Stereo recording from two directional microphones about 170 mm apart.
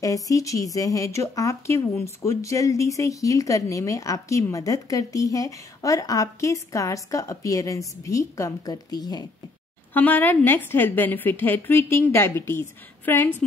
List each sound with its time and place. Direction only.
0.0 s speech: 20° left (ahead or behind)
9.9 s a woman's voice: 10° left (ahead or behind)